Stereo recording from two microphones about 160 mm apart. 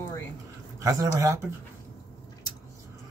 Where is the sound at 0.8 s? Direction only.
20° right (ahead or behind).